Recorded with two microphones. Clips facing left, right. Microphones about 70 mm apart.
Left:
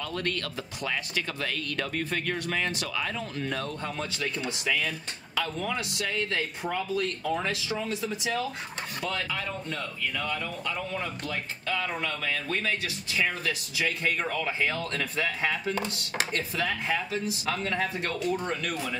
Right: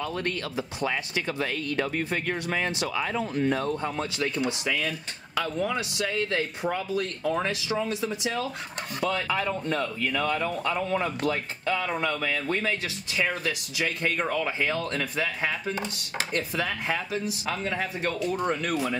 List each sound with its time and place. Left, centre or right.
0.0 s speech: centre
9.3 s speech: right
12.6 s speech: centre